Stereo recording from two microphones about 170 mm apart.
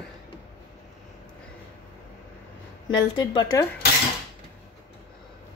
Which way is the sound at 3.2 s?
20° left (ahead or behind).